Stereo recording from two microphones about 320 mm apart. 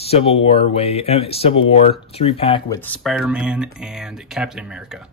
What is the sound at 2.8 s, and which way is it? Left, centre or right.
Speech, centre.